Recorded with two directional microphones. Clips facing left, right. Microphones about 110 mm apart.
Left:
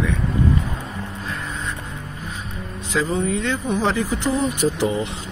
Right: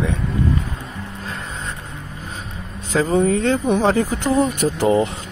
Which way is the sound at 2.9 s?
45° right (ahead or behind).